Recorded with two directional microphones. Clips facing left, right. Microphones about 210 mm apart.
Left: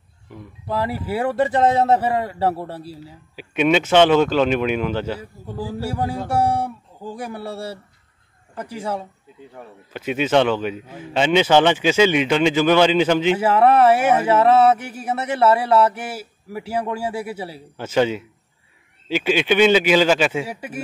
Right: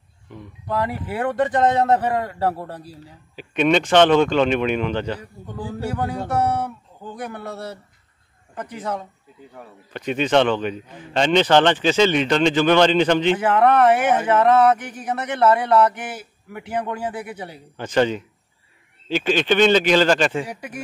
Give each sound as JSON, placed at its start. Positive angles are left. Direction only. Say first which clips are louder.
{"t": 0.3, "sound": "a man's voice", "louder": "even", "side_deg": 5}
{"t": 6.4, "sound": "speech", "louder": "left 2 dB", "side_deg": 30}
{"t": 7.0, "sound": "a man's voice", "louder": "left 2 dB", "side_deg": 10}
{"t": 9.6, "sound": "a man's voice", "louder": "even", "side_deg": 5}
{"t": 14.0, "sound": "speech", "louder": "left 2 dB", "side_deg": 30}
{"t": 14.3, "sound": "a man's voice", "louder": "left 1 dB", "side_deg": 5}
{"t": 17.1, "sound": "speech", "louder": "left 4 dB", "side_deg": 30}
{"t": 17.7, "sound": "a man's voice", "louder": "even", "side_deg": 5}